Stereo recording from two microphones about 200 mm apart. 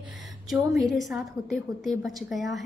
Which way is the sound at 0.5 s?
Centre (ahead or behind).